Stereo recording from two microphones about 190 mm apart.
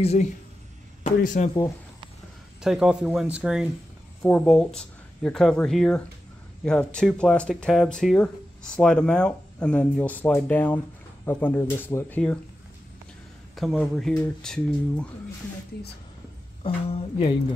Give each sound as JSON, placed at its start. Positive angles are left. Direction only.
{"t": 0.0, "sound": "speech", "side_deg": 35}
{"t": 2.6, "sound": "speech", "side_deg": -5}
{"t": 13.6, "sound": "speech", "side_deg": 0}
{"t": 16.6, "sound": "speech", "side_deg": 25}